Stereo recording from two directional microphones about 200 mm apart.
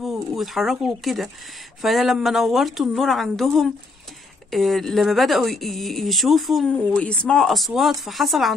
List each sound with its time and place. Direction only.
0.0 s speech: centre (ahead or behind)